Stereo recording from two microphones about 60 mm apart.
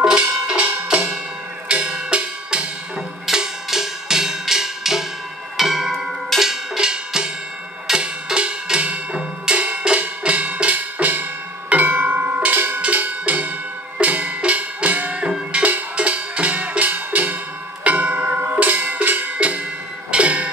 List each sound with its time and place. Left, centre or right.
0.0 s music: centre
1.7 s drum: centre
3.3 s music: centre
5.6 s percussion: centre; by 11.2 s right
11.7 s tubular bells: right
12.4 s cowbell: right
12.8 s music: right
17.8 s a sound: right